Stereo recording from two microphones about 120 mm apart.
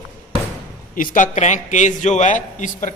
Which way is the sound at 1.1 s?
85° left.